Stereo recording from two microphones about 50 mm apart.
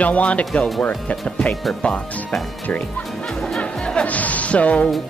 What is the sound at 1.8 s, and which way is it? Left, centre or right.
Speech, left.